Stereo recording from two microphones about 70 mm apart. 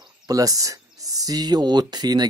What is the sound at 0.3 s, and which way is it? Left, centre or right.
Speech, right.